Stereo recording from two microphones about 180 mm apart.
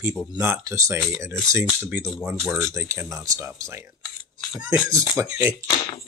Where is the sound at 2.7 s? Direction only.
15° right (ahead or behind).